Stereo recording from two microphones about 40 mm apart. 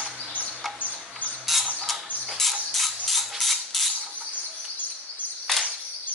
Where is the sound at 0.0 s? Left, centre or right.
Right.